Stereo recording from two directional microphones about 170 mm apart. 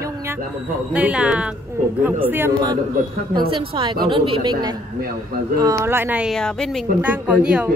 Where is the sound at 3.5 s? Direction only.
30° right (ahead or behind); by 6.3 s 10° right (ahead or behind).